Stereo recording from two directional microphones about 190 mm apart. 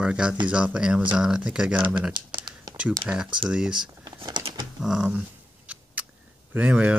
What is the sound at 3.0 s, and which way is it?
Speech, 5° right (ahead or behind).